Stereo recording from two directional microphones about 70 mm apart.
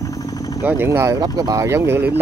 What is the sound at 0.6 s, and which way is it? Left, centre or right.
Speech, right.